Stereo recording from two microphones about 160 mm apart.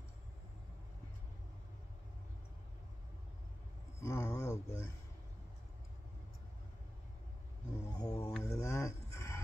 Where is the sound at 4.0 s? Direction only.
20° left (ahead or behind).